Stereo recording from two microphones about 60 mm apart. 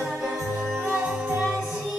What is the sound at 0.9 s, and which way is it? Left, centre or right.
Music, centre.